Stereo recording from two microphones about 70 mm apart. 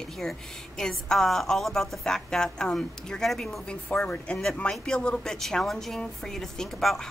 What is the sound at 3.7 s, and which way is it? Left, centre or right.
Speech, centre.